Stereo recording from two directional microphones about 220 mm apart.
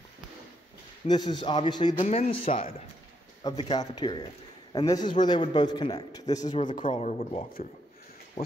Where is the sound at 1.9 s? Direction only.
30° left (ahead or behind).